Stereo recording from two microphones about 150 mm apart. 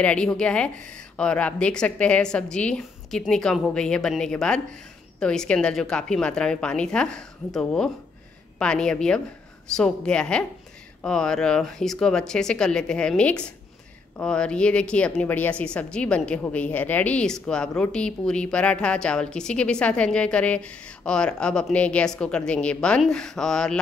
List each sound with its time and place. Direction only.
0.0 s a woman's voice: 5° left (ahead or behind)